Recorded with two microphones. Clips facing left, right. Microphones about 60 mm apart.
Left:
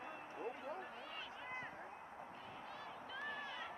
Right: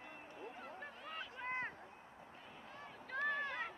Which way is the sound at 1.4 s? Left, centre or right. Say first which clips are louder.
Right 8 dB; right.